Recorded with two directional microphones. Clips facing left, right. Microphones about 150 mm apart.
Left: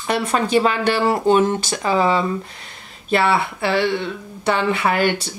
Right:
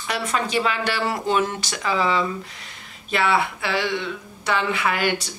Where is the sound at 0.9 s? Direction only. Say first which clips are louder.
Left 7 dB; 25° left (ahead or behind).